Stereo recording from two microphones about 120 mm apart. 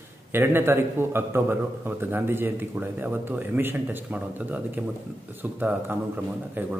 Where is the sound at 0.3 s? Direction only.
20° right (ahead or behind).